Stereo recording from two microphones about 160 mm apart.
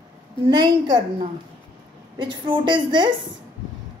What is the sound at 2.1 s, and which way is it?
A woman's voice, 30° right (ahead or behind).